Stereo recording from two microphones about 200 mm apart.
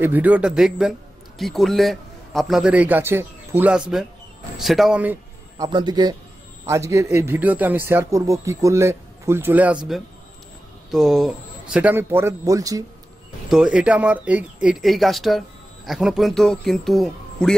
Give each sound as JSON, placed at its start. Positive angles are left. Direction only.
{"t": 0.0, "sound": "a man's voice", "side_deg": -10}
{"t": 5.7, "sound": "a man's voice", "side_deg": -20}
{"t": 10.9, "sound": "a man's voice", "side_deg": 0}
{"t": 13.5, "sound": "speech", "side_deg": -5}